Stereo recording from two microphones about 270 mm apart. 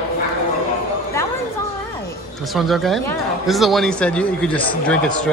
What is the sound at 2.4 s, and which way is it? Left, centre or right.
Speech, centre.